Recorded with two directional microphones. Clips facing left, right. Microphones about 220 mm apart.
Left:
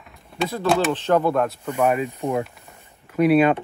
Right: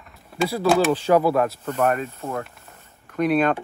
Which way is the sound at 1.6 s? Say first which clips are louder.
Left 1 dB; 10° left (ahead or behind).